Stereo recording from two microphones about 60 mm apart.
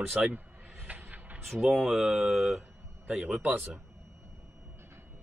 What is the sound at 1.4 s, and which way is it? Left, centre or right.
Speech, centre.